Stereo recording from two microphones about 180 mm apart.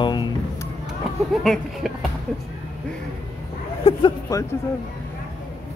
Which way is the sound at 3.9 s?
25° left (ahead or behind).